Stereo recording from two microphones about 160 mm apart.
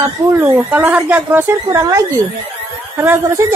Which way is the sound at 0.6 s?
10° right (ahead or behind).